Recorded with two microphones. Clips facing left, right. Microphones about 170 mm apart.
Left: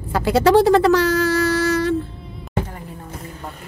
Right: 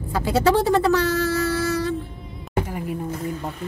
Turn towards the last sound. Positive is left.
turn(degrees=-15)  # may be behind; listen again after turning